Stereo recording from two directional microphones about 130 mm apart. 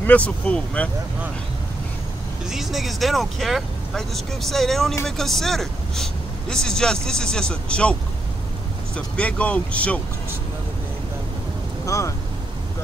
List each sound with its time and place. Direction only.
0.0 s speech: 10° left (ahead or behind)
2.5 s speech: centre (ahead or behind)
11.8 s speech: 25° left (ahead or behind)